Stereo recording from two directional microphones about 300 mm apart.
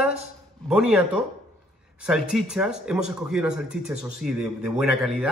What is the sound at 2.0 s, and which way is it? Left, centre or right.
Speech, centre.